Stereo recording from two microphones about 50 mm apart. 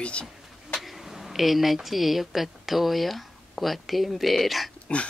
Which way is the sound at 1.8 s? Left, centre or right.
Centre.